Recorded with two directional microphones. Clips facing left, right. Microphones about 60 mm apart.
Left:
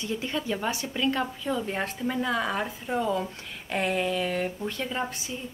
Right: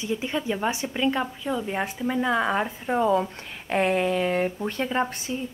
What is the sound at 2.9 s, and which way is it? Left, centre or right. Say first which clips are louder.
Speech: right 6 dB; right.